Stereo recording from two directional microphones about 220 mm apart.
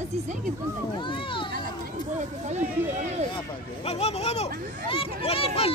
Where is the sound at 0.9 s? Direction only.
20° left (ahead or behind).